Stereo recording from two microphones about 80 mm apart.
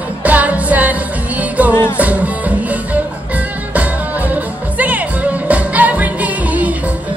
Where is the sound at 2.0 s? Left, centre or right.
Centre.